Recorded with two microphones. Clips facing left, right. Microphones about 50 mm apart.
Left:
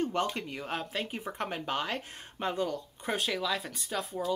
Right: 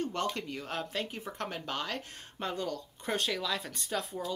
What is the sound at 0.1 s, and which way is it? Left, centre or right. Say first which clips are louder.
Speech: left 2 dB; centre.